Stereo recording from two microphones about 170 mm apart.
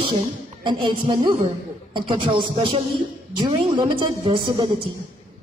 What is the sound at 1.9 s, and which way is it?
A woman's voice, 30° right (ahead or behind).